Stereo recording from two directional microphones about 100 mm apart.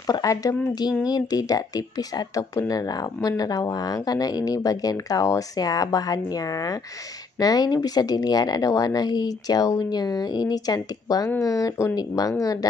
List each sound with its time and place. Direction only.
0.0 s speech: 35° left (ahead or behind)